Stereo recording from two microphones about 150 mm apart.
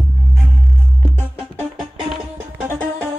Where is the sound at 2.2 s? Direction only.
10° right (ahead or behind).